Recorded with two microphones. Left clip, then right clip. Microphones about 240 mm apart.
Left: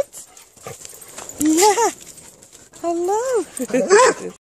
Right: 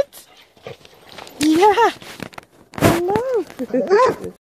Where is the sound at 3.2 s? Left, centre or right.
Centre.